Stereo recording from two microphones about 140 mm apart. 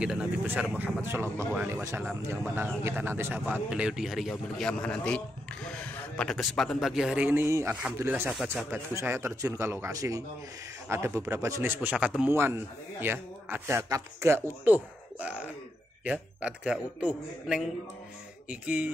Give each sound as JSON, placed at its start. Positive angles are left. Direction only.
{"t": 0.0, "sound": "a man's voice", "side_deg": -5}
{"t": 8.3, "sound": "a man's voice", "side_deg": -5}
{"t": 8.9, "sound": "a man's voice", "side_deg": -20}